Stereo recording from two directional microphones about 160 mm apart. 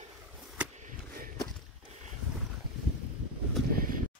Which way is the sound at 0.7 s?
55° right (ahead or behind).